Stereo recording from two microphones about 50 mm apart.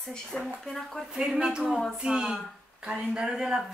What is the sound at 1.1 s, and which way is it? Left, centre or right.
Speech, centre.